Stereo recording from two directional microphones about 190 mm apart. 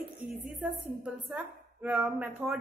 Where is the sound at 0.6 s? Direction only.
10° right (ahead or behind).